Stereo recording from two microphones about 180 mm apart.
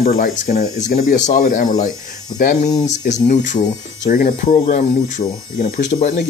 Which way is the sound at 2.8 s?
40° left (ahead or behind).